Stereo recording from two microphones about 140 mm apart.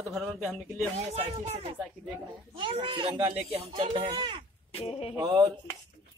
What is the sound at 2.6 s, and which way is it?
Speech, 35° right (ahead or behind).